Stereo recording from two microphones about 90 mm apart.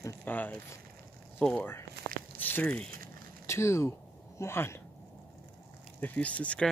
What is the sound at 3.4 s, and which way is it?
Speech, 30° left (ahead or behind).